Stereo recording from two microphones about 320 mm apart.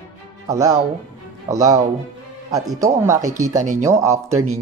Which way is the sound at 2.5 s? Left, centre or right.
Centre.